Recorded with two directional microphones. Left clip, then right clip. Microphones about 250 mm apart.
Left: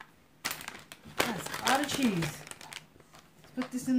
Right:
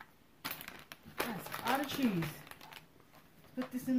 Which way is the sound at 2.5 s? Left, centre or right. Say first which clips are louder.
Left 7 dB; left.